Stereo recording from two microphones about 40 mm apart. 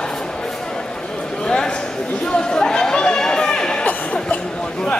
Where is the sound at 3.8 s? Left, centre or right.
Left.